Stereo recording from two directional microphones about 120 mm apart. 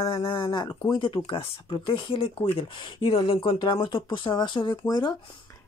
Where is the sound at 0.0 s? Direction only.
45° left (ahead or behind).